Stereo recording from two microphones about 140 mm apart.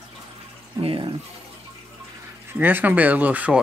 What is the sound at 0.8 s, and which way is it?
Speech, 35° right (ahead or behind).